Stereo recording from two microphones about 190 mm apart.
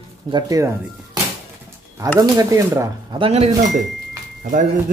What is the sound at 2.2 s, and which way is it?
Speech, 15° right (ahead or behind).